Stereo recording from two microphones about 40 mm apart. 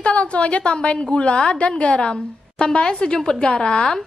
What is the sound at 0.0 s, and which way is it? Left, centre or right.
A woman's voice, left.